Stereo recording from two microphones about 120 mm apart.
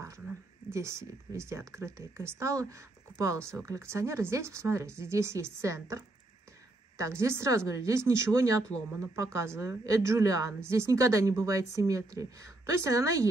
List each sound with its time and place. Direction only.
0.7 s speech: 25° right (ahead or behind)